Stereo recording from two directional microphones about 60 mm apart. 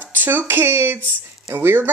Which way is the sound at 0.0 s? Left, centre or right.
Right.